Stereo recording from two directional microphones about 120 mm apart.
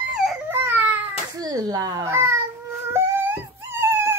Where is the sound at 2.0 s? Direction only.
20° right (ahead or behind).